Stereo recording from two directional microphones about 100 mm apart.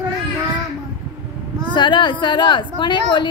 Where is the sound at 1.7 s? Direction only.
50° left (ahead or behind).